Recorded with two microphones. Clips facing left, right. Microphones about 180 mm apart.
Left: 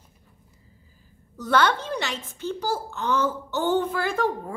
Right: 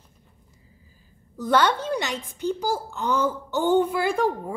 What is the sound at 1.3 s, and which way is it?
A woman's voice, 15° right (ahead or behind).